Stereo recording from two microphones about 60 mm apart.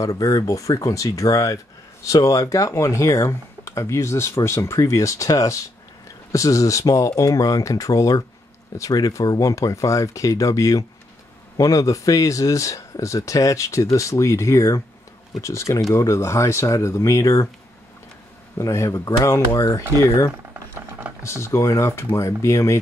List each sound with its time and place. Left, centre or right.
0.0 s speech: left
18.6 s speech: left
19.5 s speech: left
21.2 s speech: left